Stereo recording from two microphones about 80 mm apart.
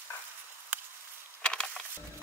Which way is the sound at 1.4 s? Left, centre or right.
Centre.